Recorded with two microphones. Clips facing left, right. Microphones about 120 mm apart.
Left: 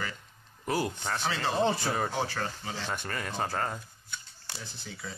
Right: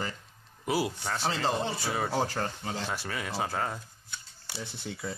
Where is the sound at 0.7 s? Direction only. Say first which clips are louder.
Right 1 dB; 5° right (ahead or behind).